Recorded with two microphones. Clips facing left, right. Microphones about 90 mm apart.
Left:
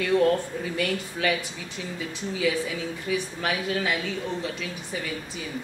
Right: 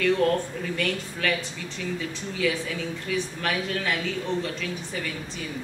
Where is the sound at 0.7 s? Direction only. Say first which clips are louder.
Left 2 dB; 5° left (ahead or behind).